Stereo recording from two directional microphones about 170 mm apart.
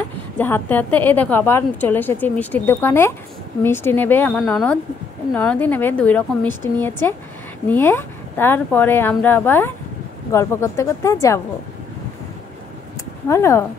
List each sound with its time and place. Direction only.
0.4 s a woman's voice: 10° left (ahead or behind)
13.3 s a woman's voice: 15° left (ahead or behind)